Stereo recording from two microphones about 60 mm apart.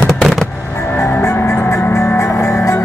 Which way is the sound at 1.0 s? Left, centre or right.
Left.